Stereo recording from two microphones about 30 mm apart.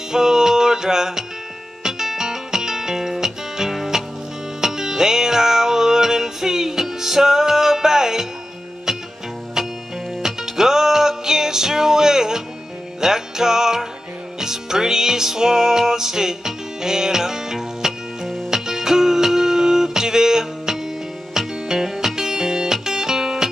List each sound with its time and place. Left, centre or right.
0.1 s music: centre
10.2 s music: centre